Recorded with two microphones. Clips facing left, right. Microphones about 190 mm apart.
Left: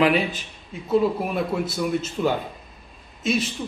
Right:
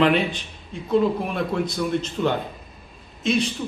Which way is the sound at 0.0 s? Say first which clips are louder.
Right 1 dB; 5° left (ahead or behind).